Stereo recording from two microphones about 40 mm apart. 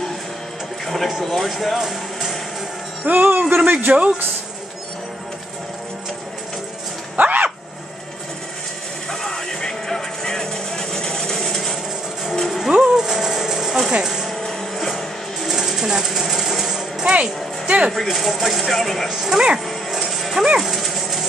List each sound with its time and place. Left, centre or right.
0.8 s music: centre
1.2 s speech: centre
3.1 s a man's voice: right
7.2 s vehicle: right
9.1 s music: centre
12.7 s a sound: centre
14.3 s music: centre
15.4 s sewing machine: centre
17.1 s music: right
18.0 s speech: centre
19.0 s speech: centre
20.1 s dog: centre